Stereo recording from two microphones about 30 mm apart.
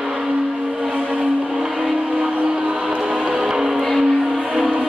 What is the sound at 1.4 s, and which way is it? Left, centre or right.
Music, right.